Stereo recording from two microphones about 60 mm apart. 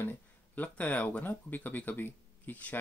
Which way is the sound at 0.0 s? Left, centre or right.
Left.